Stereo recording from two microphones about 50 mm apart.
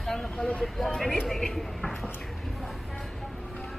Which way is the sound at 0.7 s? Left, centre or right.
Centre.